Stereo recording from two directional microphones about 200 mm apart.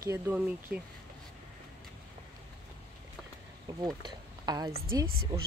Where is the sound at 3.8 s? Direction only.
20° right (ahead or behind).